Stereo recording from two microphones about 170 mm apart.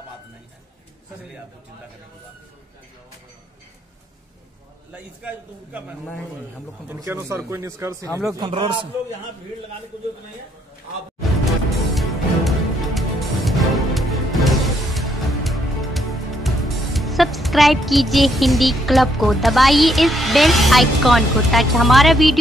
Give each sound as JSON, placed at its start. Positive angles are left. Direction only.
{"t": 4.9, "sound": "a man's voice", "side_deg": -10}
{"t": 11.7, "sound": "music", "side_deg": 0}